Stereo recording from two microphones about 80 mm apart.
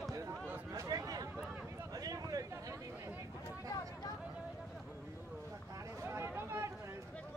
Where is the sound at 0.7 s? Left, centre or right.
Right.